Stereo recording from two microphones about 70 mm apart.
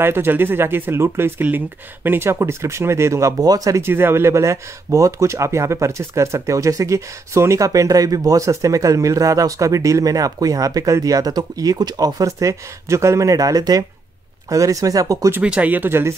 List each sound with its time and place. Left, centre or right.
0.0 s speech: right
3.3 s speech: right
3.8 s speech: right
15.4 s speech: centre; by 16.2 s right